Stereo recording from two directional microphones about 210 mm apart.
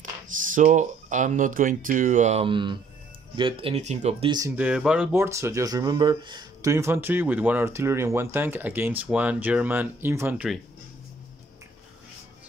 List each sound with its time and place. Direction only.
0.4 s speech: 40° right (ahead or behind)
4.3 s speech: 15° right (ahead or behind)
4.6 s speech: 5° right (ahead or behind)